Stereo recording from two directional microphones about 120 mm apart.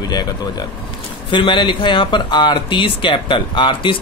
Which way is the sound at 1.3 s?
45° left (ahead or behind).